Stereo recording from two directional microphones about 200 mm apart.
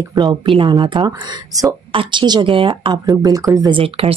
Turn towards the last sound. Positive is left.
turn(degrees=-30)  # may be behind; listen again after turning